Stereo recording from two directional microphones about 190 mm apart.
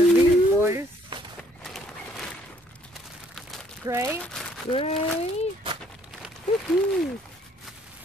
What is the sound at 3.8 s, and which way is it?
Speech, 15° right (ahead or behind).